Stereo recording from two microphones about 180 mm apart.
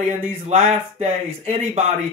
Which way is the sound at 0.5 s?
40° right (ahead or behind).